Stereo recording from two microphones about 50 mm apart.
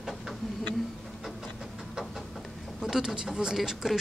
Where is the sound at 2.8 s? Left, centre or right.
Centre.